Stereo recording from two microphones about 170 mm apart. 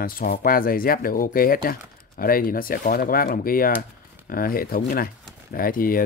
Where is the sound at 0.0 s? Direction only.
60° left (ahead or behind).